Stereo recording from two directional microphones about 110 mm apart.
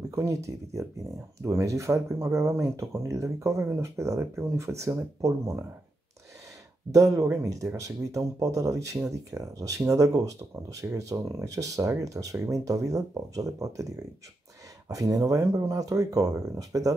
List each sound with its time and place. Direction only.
0.1 s speech: 30° right (ahead or behind)
6.9 s speech: 30° right (ahead or behind)
14.9 s speech: 30° right (ahead or behind)